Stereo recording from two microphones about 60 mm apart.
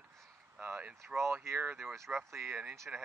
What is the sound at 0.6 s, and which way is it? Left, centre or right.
Speech, right.